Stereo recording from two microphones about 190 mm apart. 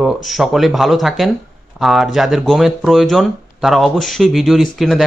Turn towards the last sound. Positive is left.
turn(degrees=0)  # may be behind; listen again after turning